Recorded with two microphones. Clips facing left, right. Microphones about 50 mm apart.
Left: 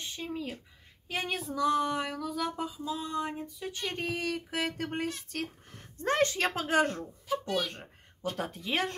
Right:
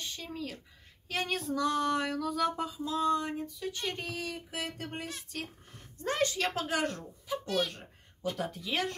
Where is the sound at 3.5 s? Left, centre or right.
Left.